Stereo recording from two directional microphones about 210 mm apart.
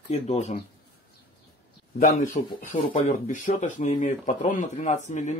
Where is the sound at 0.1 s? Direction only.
30° left (ahead or behind).